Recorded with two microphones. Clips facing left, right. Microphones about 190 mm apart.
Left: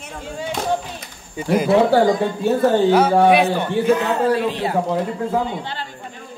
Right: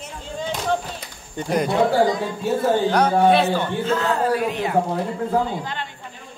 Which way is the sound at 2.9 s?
5° left (ahead or behind).